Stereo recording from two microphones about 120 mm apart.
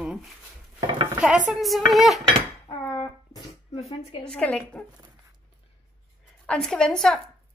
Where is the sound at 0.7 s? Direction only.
45° right (ahead or behind).